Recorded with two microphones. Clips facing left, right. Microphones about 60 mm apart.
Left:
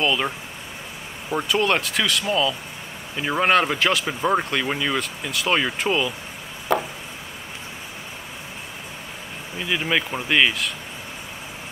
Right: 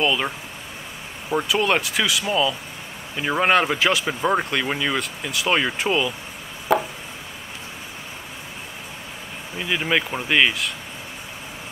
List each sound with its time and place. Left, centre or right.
0.0 s speech: centre
1.3 s speech: centre
6.7 s a sound: centre
9.6 s speech: centre